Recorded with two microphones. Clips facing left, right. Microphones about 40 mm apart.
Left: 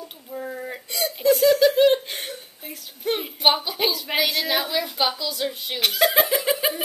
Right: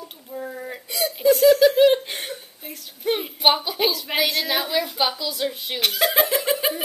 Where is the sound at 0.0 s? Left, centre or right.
Centre.